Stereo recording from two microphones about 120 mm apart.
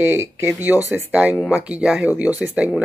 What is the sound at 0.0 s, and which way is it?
Speech, 20° right (ahead or behind).